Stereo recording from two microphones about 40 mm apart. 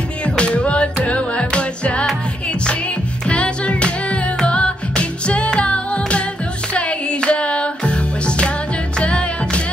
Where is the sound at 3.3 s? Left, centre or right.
Left.